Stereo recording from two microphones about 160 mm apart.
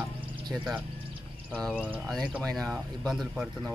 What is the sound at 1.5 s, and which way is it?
Speech, 5° left (ahead or behind).